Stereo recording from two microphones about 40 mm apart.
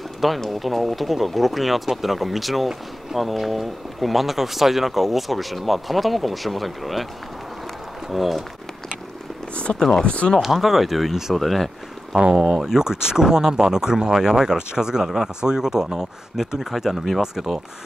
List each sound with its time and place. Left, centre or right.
0.4 s speech: centre
8.1 s speech: centre
9.7 s speech: left
10.4 s speech: centre
11.3 s speech: centre
12.2 s speech: centre